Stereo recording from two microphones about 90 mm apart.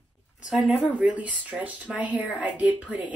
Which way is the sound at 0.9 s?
15° right (ahead or behind).